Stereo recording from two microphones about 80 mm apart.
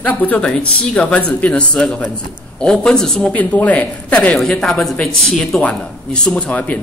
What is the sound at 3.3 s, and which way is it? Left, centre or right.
Speech, centre.